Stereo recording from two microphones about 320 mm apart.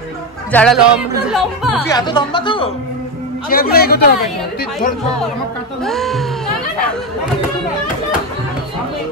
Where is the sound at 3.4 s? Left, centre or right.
Left.